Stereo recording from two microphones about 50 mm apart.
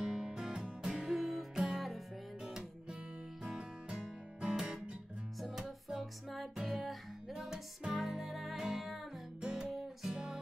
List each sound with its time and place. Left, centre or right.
0.0 s music: centre
5.4 s music: centre
6.5 s music: centre
9.4 s music: centre